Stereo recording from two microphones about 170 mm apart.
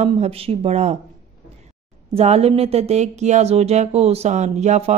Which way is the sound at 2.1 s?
40° right (ahead or behind).